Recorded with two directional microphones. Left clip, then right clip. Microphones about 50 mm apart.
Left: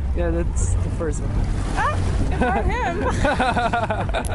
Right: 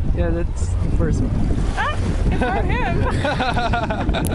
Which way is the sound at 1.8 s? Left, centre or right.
Centre.